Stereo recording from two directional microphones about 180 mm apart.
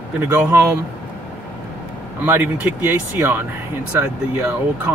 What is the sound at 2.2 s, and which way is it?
Speech, 10° right (ahead or behind).